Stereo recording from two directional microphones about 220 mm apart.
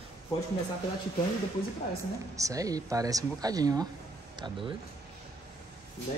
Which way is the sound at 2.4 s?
15° right (ahead or behind).